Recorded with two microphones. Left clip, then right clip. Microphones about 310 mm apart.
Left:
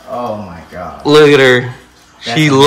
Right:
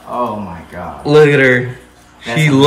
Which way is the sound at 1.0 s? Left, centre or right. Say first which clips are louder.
Left 2 dB; centre.